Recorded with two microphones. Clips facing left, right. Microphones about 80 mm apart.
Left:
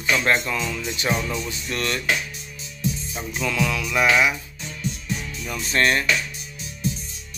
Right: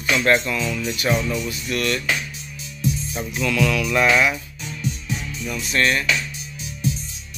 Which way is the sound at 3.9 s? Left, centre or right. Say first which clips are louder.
Even; centre.